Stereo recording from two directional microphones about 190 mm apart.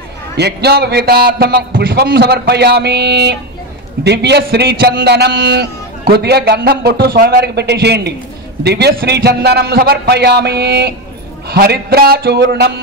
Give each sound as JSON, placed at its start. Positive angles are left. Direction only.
{"t": 0.4, "sound": "a man's voice", "side_deg": -60}